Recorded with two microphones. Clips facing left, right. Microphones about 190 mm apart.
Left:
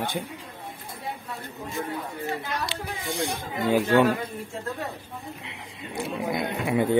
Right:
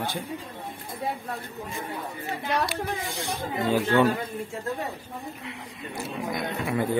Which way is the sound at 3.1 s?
15° left (ahead or behind).